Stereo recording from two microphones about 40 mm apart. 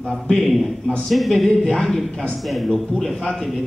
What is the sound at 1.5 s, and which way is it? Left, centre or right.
Speech, centre.